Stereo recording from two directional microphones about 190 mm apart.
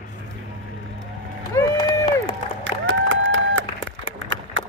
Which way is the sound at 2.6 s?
85° right.